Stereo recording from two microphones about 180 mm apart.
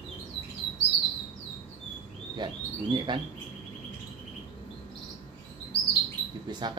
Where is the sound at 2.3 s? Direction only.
25° right (ahead or behind).